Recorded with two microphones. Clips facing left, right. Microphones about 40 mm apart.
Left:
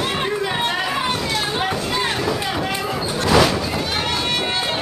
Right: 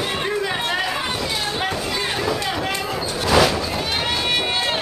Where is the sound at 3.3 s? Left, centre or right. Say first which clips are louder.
Left 1 dB; centre.